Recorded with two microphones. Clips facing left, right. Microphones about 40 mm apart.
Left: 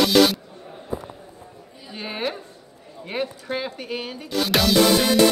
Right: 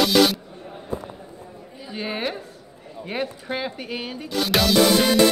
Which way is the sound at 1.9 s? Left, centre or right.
Centre.